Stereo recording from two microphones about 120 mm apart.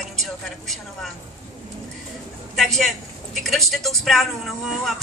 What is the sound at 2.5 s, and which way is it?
Speech, centre (ahead or behind).